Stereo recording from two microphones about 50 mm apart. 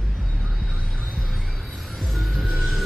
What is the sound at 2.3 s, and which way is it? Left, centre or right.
Music, centre.